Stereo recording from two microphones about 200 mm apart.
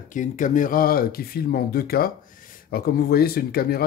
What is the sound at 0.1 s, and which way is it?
Speech, 40° left (ahead or behind).